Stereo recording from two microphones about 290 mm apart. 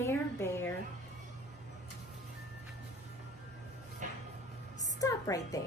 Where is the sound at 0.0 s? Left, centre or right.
Centre.